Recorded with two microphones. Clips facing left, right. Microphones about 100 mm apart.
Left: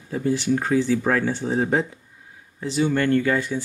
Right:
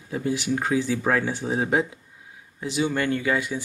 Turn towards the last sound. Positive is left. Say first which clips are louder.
# left 4 dB
turn(degrees=-10)  # may be behind; listen again after turning